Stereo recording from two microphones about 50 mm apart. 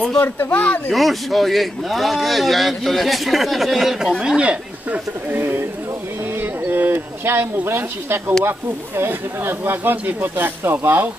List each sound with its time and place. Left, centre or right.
0.2 s speech: left
0.6 s speech: left
0.9 s speech: centre
4.4 s speech: right
6.3 s a sound: right
8.5 s speech: right